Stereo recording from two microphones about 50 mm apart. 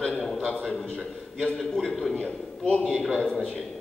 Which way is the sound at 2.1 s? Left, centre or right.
Left.